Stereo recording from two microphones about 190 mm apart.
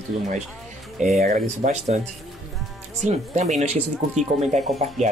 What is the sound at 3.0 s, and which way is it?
Speech, 35° right (ahead or behind).